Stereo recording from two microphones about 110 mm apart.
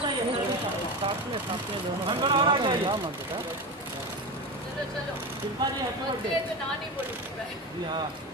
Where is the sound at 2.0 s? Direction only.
50° right (ahead or behind).